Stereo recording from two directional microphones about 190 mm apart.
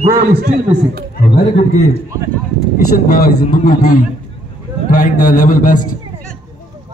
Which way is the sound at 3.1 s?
50° left (ahead or behind).